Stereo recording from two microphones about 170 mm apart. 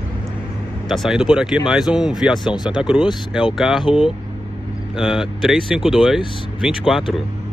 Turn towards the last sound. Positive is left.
turn(degrees=0)  # may be behind; listen again after turning